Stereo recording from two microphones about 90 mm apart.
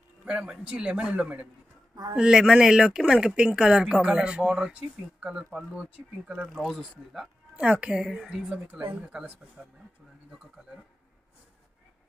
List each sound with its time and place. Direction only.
0.2 s speech: 10° right (ahead or behind)
7.5 s speech: 15° right (ahead or behind)